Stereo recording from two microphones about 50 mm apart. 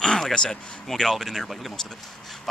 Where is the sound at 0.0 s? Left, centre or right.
Centre.